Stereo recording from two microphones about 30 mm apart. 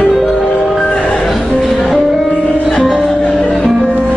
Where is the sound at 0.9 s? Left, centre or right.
Left.